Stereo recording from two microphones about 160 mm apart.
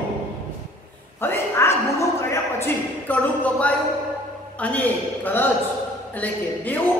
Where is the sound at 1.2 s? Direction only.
15° left (ahead or behind).